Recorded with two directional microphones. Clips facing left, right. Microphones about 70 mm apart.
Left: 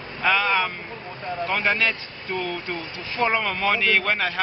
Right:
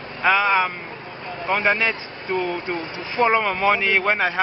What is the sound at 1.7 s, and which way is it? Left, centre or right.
Speech, centre.